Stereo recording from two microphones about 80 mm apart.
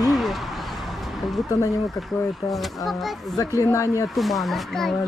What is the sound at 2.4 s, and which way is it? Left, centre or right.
Speech, centre.